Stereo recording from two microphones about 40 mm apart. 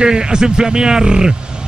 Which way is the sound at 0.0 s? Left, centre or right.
Centre.